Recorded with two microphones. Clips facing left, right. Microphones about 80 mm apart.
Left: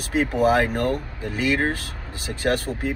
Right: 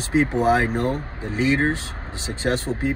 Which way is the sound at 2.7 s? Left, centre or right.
Right.